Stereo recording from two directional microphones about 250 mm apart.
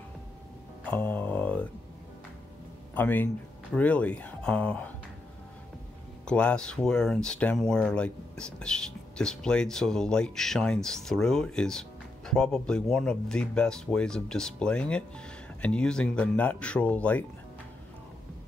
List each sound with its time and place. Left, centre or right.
0.8 s speech: centre
2.9 s speech: centre
6.2 s speech: centre